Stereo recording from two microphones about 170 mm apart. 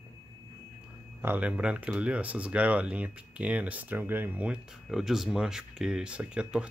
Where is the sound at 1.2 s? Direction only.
10° right (ahead or behind).